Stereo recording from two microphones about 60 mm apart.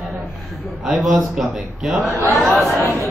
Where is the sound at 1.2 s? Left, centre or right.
Centre.